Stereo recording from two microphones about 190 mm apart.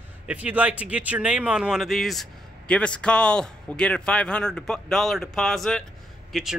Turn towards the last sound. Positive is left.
turn(degrees=0)  # may be behind; listen again after turning